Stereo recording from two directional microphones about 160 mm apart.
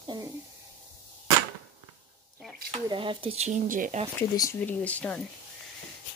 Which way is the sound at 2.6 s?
30° right (ahead or behind).